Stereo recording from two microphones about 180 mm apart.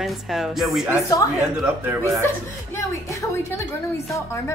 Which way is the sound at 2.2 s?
15° left (ahead or behind).